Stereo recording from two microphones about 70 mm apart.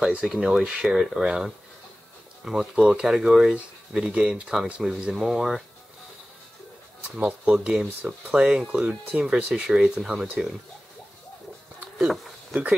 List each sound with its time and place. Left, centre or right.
0.0 s speech: centre
7.1 s speech: centre
12.0 s a sound: centre